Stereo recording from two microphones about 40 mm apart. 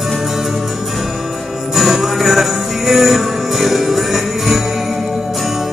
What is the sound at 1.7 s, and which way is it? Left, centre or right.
Music, centre.